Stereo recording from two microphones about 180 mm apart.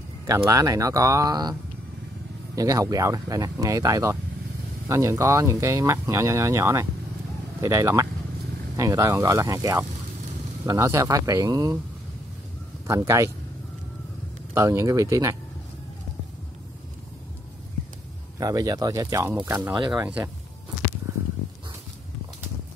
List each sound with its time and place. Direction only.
0.5 s speech: 15° right (ahead or behind)
12.8 s speech: 20° right (ahead or behind)
14.5 s speech: 15° right (ahead or behind)
18.4 s speech: 20° right (ahead or behind)